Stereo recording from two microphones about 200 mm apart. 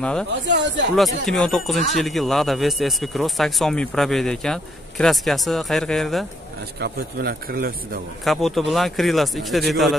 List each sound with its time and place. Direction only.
0.5 s speech: 60° right (ahead or behind)
0.9 s speech: centre (ahead or behind)
6.8 s a man's voice: 50° right (ahead or behind)
8.2 s speech: centre (ahead or behind)